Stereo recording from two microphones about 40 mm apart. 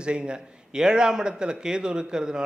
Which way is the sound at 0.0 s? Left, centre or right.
Right.